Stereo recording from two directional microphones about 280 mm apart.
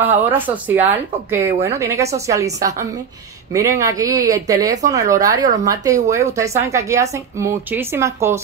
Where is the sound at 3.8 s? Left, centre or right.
Centre.